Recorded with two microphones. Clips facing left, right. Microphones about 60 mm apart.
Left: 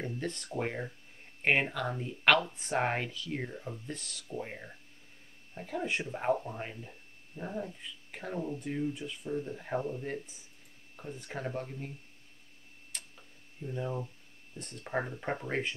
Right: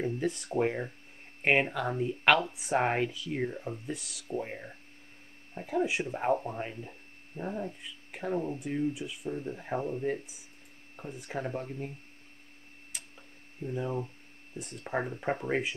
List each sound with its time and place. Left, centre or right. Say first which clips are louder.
0.0 s speech: right 6 dB; centre
5.7 s speech: right 5 dB; centre
7.3 s a sound: right 4 dB; right
8.1 s speech: right 4 dB; centre
12.9 s tick-tock: even; centre
13.7 s speech: right 2 dB; centre